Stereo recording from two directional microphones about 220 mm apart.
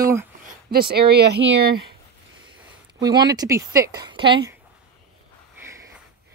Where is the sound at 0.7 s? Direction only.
45° right (ahead or behind).